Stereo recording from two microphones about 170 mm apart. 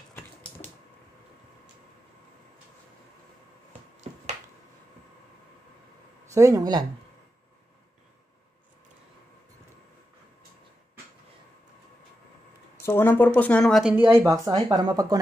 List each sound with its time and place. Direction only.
6.3 s speech: 20° right (ahead or behind)
12.8 s speech: 15° left (ahead or behind)
13.9 s speech: 15° right (ahead or behind)